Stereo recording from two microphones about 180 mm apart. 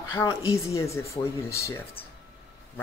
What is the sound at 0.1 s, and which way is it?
Speech, 15° left (ahead or behind).